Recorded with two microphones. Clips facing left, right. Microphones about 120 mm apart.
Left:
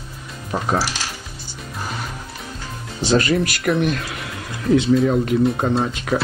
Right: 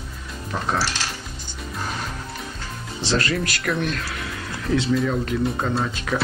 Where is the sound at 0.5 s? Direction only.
45° left (ahead or behind).